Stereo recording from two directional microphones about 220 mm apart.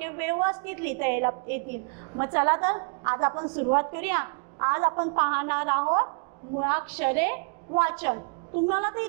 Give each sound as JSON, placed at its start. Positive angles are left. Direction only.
{"t": 0.0, "sound": "a woman's voice", "side_deg": -15}